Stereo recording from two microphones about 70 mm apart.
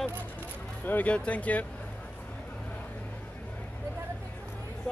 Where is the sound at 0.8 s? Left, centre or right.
Left.